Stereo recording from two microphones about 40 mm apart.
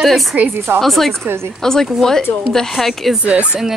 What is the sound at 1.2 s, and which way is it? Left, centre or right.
Speech, right.